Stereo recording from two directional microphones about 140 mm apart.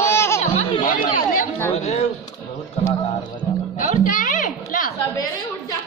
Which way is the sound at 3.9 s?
70° left (ahead or behind).